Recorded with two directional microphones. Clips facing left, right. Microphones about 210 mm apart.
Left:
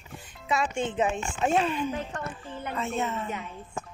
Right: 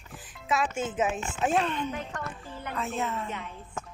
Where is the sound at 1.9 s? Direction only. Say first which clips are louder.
Left 2 dB; 25° left (ahead or behind).